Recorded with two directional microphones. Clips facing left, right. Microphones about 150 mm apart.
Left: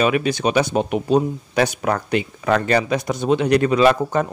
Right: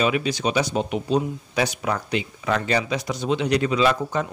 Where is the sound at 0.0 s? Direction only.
55° left (ahead or behind).